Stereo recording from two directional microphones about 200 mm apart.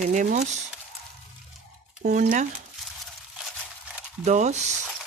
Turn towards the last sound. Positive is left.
turn(degrees=-35)  # may be behind; listen again after turning